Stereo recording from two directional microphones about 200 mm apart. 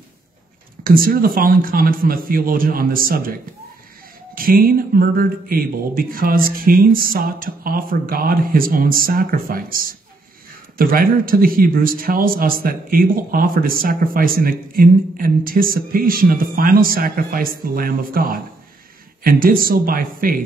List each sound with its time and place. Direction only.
0.8 s a man's voice: 45° right (ahead or behind)
4.4 s a man's voice: 45° right (ahead or behind)